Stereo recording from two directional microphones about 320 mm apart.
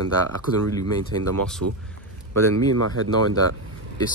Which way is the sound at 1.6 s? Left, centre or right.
Right.